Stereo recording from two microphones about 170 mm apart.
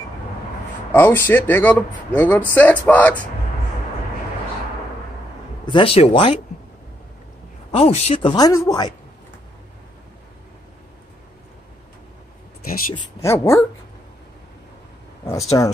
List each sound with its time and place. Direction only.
0.9 s speech: 10° left (ahead or behind)
5.7 s speech: 30° left (ahead or behind)
7.7 s speech: 35° left (ahead or behind)
13.2 s speech: 15° left (ahead or behind)
15.2 s speech: 20° left (ahead or behind)